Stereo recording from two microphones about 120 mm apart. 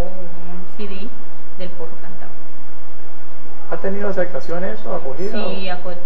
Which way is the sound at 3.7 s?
30° left (ahead or behind).